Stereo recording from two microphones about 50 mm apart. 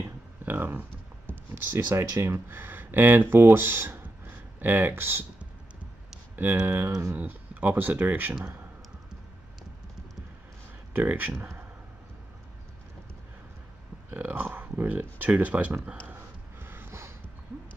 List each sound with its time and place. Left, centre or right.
0.0 s a sound: right
1.9 s speech: right
4.6 s speech: right
6.6 s speech: right
11.1 s speech: right
11.3 s speech: right
14.1 s speech: right
16.6 s a sound: right